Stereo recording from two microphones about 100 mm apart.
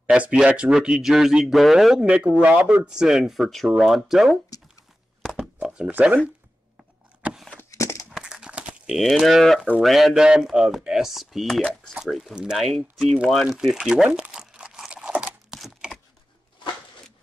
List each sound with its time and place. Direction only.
0.0 s speech: 10° right (ahead or behind)
2.0 s speech: 15° right (ahead or behind)
5.2 s chopping: 5° right (ahead or behind)
7.7 s a sound: 30° left (ahead or behind)
8.1 s a sound: 5° right (ahead or behind)
8.9 s speech: centre (ahead or behind)